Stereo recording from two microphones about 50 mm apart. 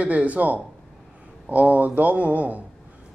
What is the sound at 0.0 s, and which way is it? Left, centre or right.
Speech, right.